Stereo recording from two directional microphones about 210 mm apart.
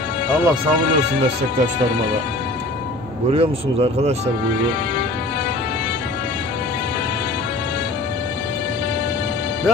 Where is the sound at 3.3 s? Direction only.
25° right (ahead or behind).